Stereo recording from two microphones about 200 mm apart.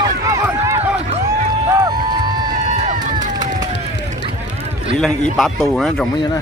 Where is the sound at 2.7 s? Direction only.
40° right (ahead or behind).